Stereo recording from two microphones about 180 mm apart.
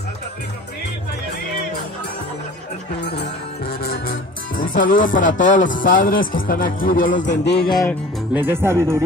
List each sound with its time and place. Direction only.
3.2 s music: 60° left (ahead or behind)
7.6 s music: 20° left (ahead or behind)
8.3 s speech: 10° right (ahead or behind)